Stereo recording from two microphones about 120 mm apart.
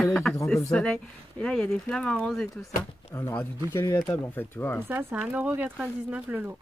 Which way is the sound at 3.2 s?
20° left (ahead or behind).